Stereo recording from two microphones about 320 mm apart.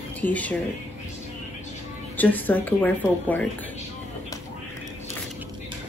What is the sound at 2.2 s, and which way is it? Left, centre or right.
A woman's voice, centre.